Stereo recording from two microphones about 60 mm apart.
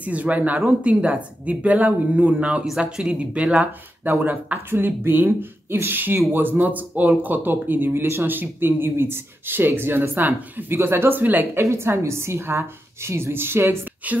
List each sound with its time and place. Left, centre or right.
0.0 s speech: right
4.0 s speech: right
11.6 s a woman's voice: right